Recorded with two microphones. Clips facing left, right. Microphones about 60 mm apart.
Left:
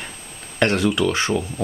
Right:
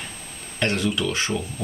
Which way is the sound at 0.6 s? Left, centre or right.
Left.